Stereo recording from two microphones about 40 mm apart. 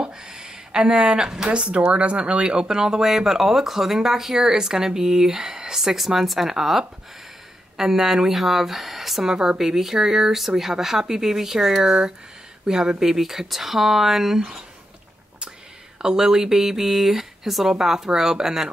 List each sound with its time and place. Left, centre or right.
0.0 s a sound: centre
1.7 s speech: right; by 9.3 s centre
9.3 s speech: centre
16.0 s speech: centre